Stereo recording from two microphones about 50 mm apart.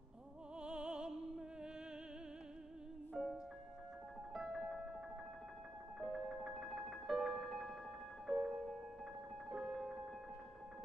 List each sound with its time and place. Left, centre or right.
0.6 s music: centre
3.2 s music: centre
5.9 s music: centre